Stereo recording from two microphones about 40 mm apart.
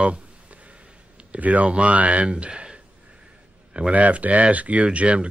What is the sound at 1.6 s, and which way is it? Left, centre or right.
Speech, right.